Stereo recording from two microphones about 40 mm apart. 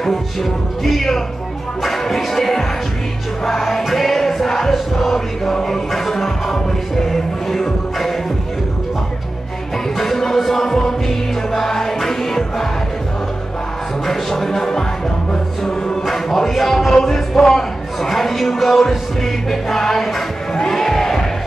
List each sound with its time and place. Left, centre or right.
0.0 s speech: centre
1.8 s music: centre
9.9 s music: centre
14.0 s music: centre
16.1 s music: centre
16.9 s a sound: centre
20.5 s crowd: centre